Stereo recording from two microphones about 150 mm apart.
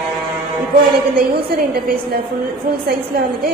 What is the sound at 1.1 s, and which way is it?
A woman's voice, 90° right.